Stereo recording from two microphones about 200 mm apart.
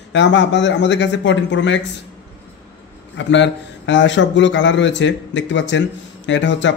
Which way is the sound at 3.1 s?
65° left (ahead or behind).